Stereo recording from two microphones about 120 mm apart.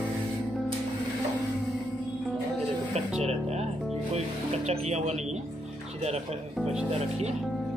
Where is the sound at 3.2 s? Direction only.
65° right (ahead or behind).